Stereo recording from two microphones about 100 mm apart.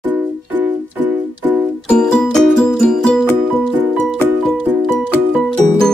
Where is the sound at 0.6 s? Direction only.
20° right (ahead or behind).